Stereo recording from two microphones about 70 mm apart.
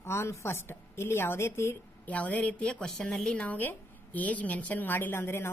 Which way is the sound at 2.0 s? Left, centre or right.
Left.